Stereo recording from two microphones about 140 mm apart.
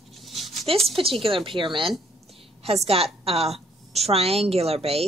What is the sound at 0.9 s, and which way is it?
A woman's voice, 40° right (ahead or behind).